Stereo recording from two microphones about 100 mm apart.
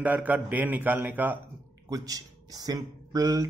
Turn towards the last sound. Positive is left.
turn(degrees=-35)  # may be behind; listen again after turning